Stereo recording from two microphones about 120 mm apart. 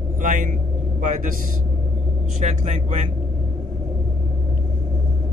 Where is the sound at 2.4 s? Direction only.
90° right.